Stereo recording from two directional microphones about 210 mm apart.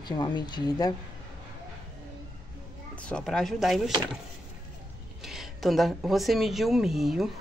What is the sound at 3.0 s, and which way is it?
Speech, 5° left (ahead or behind).